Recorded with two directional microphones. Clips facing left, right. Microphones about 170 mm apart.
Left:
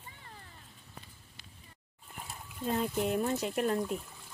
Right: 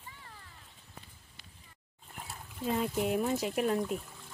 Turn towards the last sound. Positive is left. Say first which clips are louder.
# right 1 dB
turn(degrees=0)  # may be behind; listen again after turning